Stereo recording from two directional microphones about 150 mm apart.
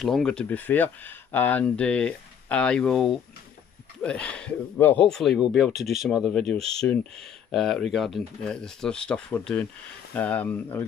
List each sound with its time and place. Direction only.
0.0 s speech: 5° left (ahead or behind)